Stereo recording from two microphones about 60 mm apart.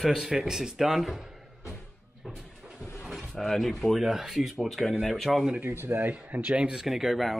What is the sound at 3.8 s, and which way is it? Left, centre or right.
Speech, centre.